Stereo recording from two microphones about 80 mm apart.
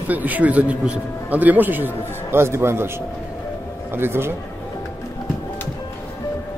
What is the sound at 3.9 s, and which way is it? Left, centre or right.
Speech, right.